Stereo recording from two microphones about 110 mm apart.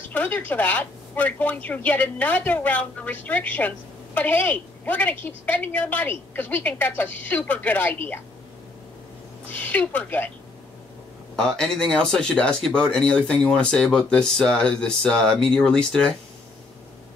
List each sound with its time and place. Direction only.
0.1 s a woman's voice: 15° left (ahead or behind)
9.5 s a woman's voice: 15° left (ahead or behind)
11.3 s a woman's voice: 5° left (ahead or behind)